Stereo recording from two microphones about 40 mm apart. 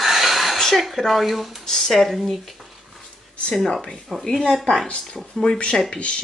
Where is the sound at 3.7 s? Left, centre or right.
Centre.